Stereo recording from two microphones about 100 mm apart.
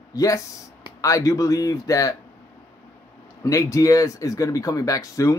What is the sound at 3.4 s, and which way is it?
Speech, 35° left (ahead or behind).